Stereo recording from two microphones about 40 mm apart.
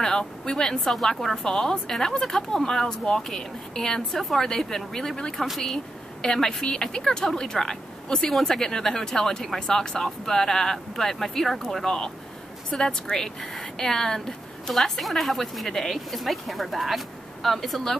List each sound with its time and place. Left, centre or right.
0.0 s speech: centre
14.7 s speech: centre